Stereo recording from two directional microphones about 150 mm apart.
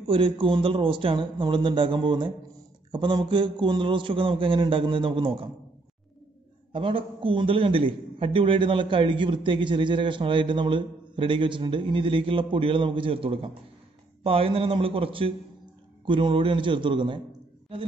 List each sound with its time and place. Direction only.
0.0 s a man's voice: 35° right (ahead or behind)
6.7 s a man's voice: 35° right (ahead or behind)